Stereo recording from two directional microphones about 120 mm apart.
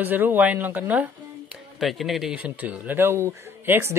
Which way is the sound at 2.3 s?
15° right (ahead or behind).